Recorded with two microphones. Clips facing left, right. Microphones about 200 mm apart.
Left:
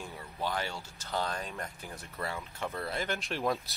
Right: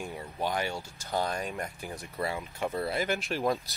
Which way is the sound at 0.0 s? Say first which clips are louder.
Right 4 dB; 15° right (ahead or behind).